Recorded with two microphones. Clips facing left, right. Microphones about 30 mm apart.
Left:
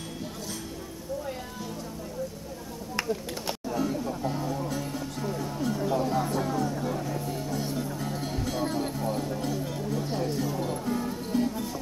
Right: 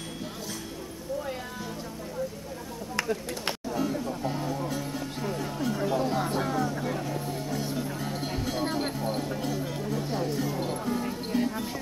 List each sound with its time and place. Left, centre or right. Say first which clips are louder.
3.7 s music: left 1 dB; centre
8.6 s a sound: right 1 dB; right
9.0 s music: even; centre
9.4 s music: even; centre
10.5 s music: even; centre
11.3 s a sound: left 1 dB; centre